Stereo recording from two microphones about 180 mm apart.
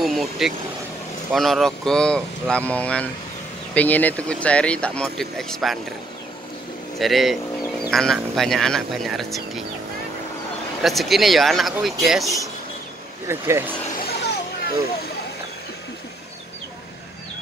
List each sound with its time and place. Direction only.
0.0 s vehicle: centre (ahead or behind)
1.3 s speech: centre (ahead or behind)
7.0 s speech: centre (ahead or behind)
10.8 s speech: centre (ahead or behind)
13.3 s speech: 15° right (ahead or behind)
14.0 s a sound: 65° left (ahead or behind)